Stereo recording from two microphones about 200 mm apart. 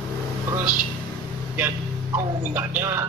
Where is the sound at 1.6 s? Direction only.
10° right (ahead or behind).